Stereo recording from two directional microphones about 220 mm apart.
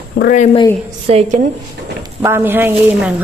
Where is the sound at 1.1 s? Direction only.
30° right (ahead or behind).